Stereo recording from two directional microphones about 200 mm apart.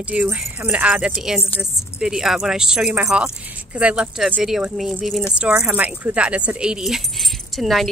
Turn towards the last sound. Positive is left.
turn(degrees=0)  # may be behind; listen again after turning